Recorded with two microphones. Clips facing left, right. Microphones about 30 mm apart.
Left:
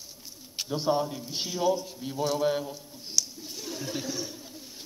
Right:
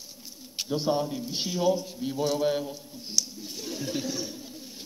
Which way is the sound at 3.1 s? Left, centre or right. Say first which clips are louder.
Even; right.